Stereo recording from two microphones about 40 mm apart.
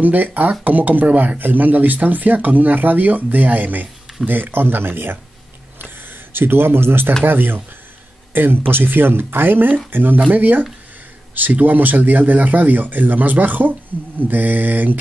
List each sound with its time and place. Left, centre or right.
0.0 s speech: right
4.3 s speech: right
5.8 s a sound: right
7.2 s speech: right
10.3 s speech: right